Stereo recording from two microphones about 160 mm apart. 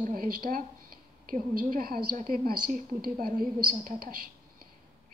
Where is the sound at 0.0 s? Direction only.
60° right (ahead or behind).